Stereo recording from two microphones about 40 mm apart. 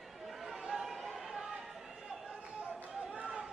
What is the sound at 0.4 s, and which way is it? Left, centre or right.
Chatter, centre.